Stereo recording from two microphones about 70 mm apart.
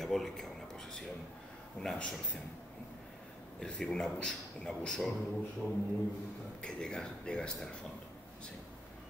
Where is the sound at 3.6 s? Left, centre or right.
Centre.